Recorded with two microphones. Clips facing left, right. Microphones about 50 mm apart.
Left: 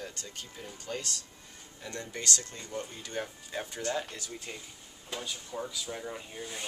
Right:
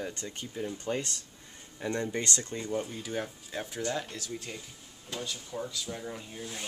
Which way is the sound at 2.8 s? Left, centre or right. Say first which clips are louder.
Right 2 dB; centre.